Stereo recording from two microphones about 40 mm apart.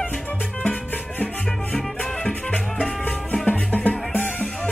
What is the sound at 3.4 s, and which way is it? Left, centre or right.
Music, left.